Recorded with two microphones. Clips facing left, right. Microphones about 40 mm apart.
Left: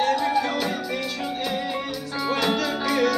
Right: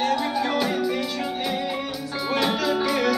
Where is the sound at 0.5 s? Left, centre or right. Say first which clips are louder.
Right 2 dB; centre.